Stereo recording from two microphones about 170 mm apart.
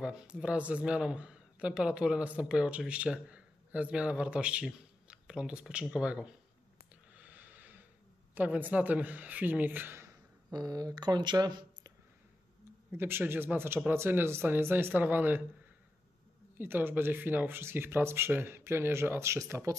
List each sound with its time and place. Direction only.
0.0 s speech: 5° right (ahead or behind)
7.2 s a sound: 10° right (ahead or behind)
8.4 s speech: 10° right (ahead or behind)
12.9 s speech: 10° right (ahead or behind)
16.5 s speech: 10° right (ahead or behind)